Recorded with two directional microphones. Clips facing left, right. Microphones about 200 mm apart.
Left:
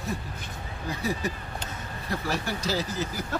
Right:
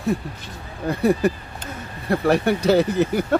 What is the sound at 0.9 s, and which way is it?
Speech, 60° right (ahead or behind).